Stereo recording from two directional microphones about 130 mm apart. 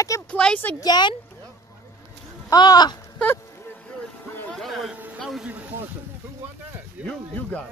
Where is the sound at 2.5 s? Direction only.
30° left (ahead or behind).